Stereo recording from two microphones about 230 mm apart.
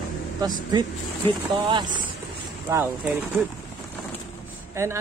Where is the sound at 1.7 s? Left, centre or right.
Centre.